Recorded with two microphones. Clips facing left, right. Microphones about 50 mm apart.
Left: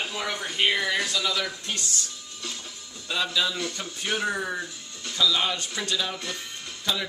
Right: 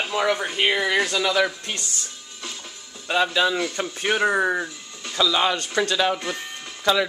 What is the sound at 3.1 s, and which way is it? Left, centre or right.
Speech, right.